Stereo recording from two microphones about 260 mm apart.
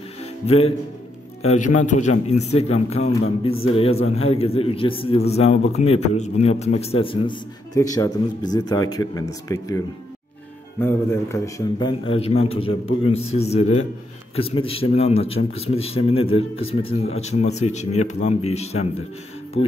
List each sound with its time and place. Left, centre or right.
0.2 s music: left
1.5 s a man's voice: left